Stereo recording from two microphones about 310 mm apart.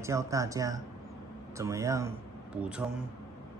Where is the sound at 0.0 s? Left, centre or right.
Centre.